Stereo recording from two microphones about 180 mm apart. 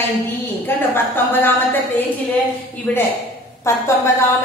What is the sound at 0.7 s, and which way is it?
A woman's voice, 10° left (ahead or behind).